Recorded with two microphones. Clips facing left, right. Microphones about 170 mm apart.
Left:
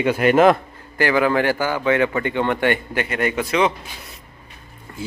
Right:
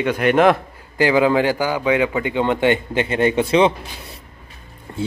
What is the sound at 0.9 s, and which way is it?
Speech, 15° right (ahead or behind).